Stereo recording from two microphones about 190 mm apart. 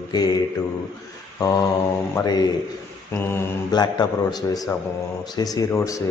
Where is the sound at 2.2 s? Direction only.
20° left (ahead or behind).